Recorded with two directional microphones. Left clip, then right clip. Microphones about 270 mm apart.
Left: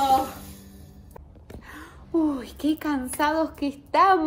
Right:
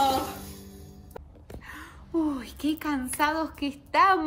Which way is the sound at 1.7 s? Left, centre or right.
Centre.